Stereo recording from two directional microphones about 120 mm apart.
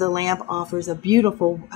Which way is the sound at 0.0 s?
30° right (ahead or behind).